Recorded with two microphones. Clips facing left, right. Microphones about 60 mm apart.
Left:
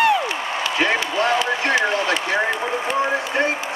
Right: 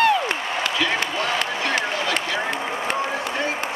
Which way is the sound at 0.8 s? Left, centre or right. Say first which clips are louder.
Left 6 dB; left.